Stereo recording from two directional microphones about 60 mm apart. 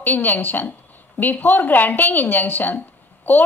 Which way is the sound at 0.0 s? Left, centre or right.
Left.